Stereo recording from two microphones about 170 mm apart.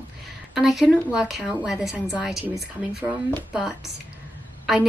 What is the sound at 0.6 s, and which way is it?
A woman's voice, centre (ahead or behind).